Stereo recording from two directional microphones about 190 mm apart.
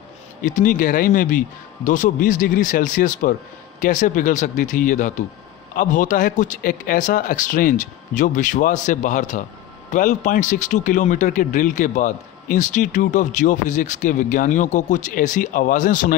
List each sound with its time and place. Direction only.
0.4 s a man's voice: 45° left (ahead or behind)